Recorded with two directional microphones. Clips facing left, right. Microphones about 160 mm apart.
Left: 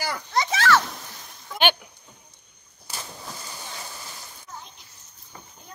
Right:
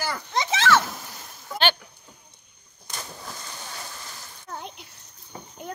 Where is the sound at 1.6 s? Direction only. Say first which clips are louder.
Left 2 dB; 15° left (ahead or behind).